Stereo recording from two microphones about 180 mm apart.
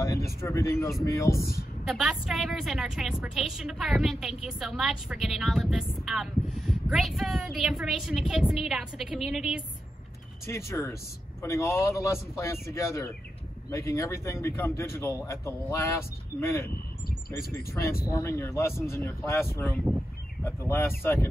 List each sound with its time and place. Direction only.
0.4 s a man's voice: 15° left (ahead or behind)
1.3 s a woman's voice: 55° left (ahead or behind)
1.9 s a woman's voice: centre (ahead or behind)
10.4 s a man's voice: 15° left (ahead or behind)